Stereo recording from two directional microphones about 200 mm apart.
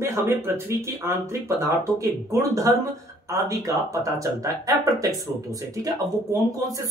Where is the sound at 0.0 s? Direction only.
15° right (ahead or behind).